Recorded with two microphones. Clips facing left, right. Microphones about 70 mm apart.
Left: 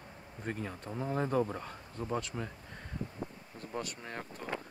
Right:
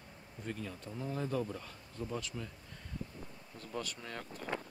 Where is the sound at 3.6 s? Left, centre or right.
Left.